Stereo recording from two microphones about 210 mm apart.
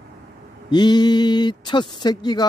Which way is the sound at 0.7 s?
20° left (ahead or behind).